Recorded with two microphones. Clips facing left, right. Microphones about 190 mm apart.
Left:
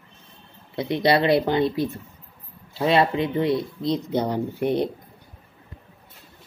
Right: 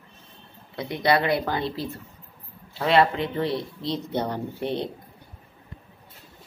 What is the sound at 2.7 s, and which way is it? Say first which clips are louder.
A woman's voice: left 1 dB; 20° left (ahead or behind).